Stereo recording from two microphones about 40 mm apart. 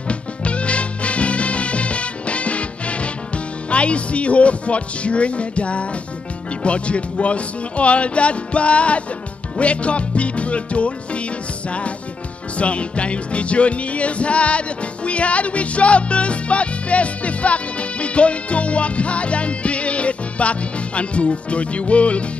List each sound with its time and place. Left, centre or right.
0.1 s music: left
12.5 s music: left